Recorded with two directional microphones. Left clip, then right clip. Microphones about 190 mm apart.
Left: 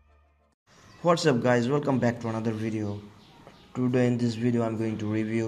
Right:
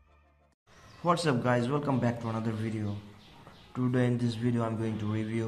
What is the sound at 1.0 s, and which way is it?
Speech, 25° left (ahead or behind).